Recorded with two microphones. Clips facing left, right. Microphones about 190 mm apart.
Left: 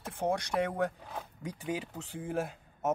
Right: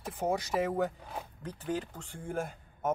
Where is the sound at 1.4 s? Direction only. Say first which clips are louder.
Right 1 dB; 10° left (ahead or behind).